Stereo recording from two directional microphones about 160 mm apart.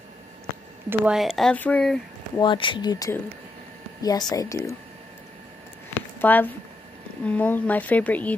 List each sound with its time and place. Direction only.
0.8 s speech: 5° right (ahead or behind)
2.3 s speech: 30° left (ahead or behind)
6.1 s speech: 10° left (ahead or behind)